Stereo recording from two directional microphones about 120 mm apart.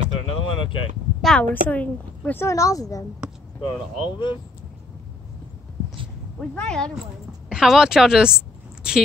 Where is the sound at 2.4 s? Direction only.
25° left (ahead or behind).